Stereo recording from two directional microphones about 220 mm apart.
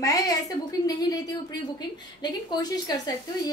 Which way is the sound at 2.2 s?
20° left (ahead or behind).